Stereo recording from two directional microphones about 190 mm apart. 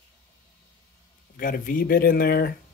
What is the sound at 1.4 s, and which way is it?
Speech, 45° left (ahead or behind).